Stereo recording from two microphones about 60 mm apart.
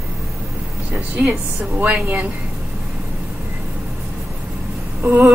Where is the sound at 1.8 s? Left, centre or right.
Right.